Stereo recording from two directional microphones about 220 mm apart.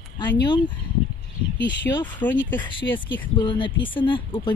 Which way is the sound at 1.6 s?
55° left (ahead or behind).